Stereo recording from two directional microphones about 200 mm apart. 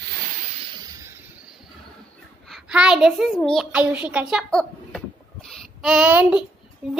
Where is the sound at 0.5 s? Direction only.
25° right (ahead or behind).